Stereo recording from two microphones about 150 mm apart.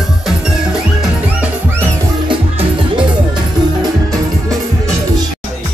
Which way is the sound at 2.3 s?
35° right (ahead or behind).